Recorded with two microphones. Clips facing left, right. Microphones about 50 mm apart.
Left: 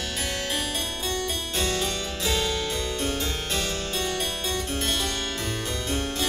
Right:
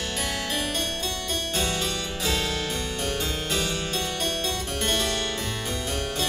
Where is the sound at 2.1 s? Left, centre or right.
Centre.